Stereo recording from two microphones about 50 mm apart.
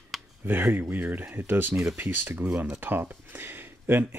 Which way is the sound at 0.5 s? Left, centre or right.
Right.